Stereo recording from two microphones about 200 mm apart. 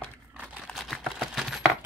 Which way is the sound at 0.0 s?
5° right (ahead or behind).